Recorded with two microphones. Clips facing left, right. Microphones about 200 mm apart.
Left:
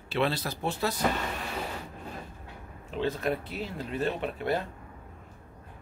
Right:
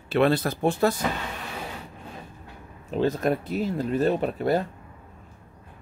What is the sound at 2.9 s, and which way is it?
Speech, 40° right (ahead or behind).